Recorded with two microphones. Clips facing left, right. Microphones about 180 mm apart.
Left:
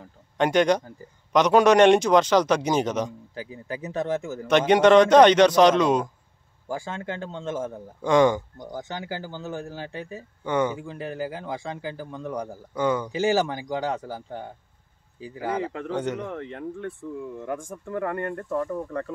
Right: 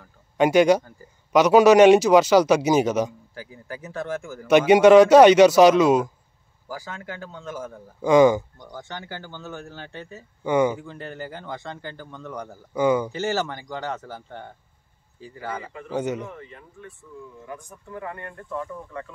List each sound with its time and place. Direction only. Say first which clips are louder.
0.4 s speech: right 4 dB; 5° right (ahead or behind)
3.3 s speech: left 4 dB; 20° left (ahead or behind)
4.5 s speech: right 4 dB; 10° right (ahead or behind)
6.7 s speech: left 4 dB; 25° left (ahead or behind)
8.0 s speech: right 3 dB; 5° right (ahead or behind)
8.6 s speech: left 4 dB; 20° left (ahead or behind)
10.4 s speech: right 4 dB; 10° right (ahead or behind)
10.8 s speech: left 4 dB; 5° left (ahead or behind)
12.7 s speech: right 4 dB; 10° right (ahead or behind)
13.1 s speech: left 3 dB; 15° left (ahead or behind)
15.9 s speech: right 3 dB; 5° right (ahead or behind)
16.2 s speech: left 5 dB; 75° left (ahead or behind); by 19.0 s 45° left (ahead or behind)